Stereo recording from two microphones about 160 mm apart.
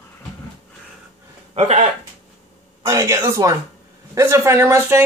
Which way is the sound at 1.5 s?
45° right (ahead or behind).